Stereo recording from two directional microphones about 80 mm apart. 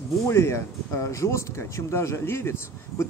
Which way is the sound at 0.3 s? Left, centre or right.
Left.